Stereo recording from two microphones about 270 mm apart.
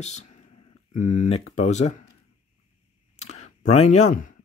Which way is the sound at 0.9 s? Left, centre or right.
Left.